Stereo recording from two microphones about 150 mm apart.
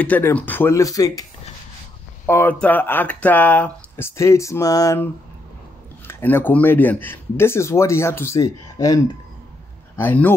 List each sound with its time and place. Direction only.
0.0 s speech: 10° left (ahead or behind)
2.2 s speech: 15° left (ahead or behind)
9.9 s speech: 10° left (ahead or behind)